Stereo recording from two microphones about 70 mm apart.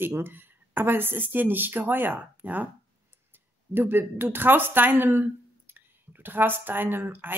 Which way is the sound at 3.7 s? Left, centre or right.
Right.